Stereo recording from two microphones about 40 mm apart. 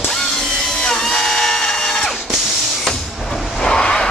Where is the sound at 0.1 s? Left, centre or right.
Centre.